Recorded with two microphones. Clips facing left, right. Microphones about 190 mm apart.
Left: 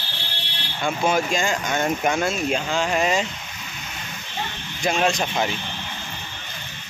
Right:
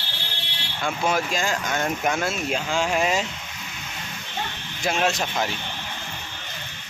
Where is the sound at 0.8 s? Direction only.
Centre (ahead or behind).